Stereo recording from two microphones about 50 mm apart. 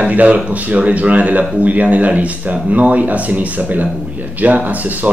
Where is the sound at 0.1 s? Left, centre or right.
Right.